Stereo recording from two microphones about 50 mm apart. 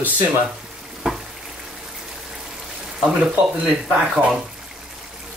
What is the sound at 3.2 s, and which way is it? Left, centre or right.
Speech, centre.